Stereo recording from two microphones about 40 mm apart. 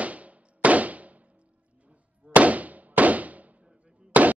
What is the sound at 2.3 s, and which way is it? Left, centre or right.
Firecracker, right.